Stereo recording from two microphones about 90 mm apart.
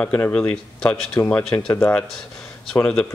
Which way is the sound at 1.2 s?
35° left (ahead or behind).